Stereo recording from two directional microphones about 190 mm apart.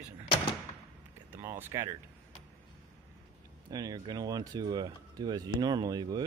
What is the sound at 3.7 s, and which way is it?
Speech, 20° right (ahead or behind).